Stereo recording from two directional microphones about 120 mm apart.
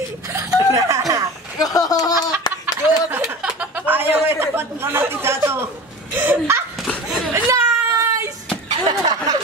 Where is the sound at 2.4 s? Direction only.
35° left (ahead or behind).